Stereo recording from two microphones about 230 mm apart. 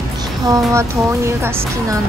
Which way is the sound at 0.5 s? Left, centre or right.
Centre.